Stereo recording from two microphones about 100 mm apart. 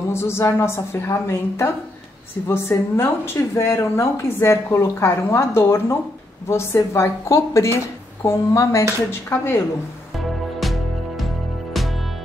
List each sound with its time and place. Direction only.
0.1 s speech: 25° left (ahead or behind)
10.1 s music: centre (ahead or behind)